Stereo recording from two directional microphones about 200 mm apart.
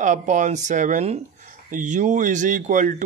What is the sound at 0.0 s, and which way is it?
Speech, 40° right (ahead or behind).